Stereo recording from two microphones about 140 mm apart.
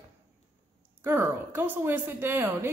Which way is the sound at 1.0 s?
15° right (ahead or behind).